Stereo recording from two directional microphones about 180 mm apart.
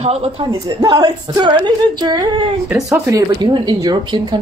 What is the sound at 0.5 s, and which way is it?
Speech, 20° right (ahead or behind).